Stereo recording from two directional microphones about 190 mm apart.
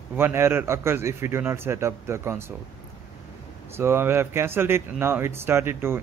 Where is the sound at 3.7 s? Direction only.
10° right (ahead or behind).